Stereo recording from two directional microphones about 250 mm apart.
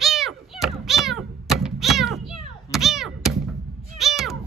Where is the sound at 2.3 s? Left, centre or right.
Centre.